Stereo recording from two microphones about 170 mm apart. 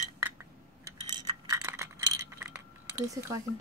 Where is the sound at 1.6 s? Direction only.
15° right (ahead or behind).